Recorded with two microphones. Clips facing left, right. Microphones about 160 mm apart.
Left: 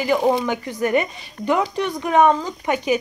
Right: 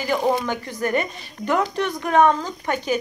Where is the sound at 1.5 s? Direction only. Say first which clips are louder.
Left 1 dB; 5° left (ahead or behind).